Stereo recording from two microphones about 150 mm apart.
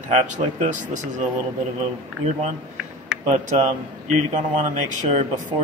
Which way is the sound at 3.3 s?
45° right (ahead or behind).